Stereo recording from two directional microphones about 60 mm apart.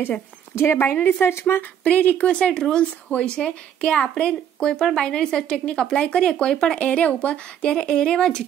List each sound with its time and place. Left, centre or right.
0.6 s speech: left
1.9 s speech: left
2.2 s a woman's voice: centre
7.7 s a woman's voice: centre